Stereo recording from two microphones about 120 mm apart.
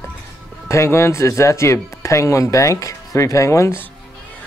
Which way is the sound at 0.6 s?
25° left (ahead or behind).